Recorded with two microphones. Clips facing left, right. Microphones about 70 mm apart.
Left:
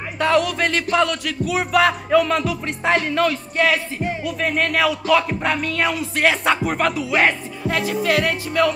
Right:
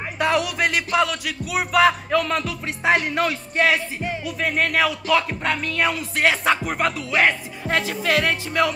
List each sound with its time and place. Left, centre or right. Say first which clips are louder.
0.2 s speech: left 3 dB; centre
2.9 s speech: left 2 dB; centre
4.2 s speech: left 1 dB; centre
7.7 s speech: even; centre
8.2 s music: left 2 dB; right